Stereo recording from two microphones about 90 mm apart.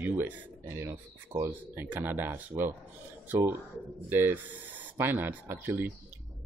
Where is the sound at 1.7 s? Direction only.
20° right (ahead or behind).